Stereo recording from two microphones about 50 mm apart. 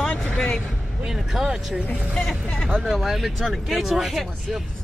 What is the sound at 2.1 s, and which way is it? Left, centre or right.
Speech, centre.